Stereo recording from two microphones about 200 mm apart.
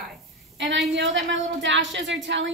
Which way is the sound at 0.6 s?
65° right (ahead or behind).